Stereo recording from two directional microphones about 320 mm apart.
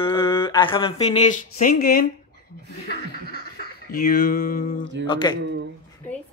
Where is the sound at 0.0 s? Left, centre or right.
Centre.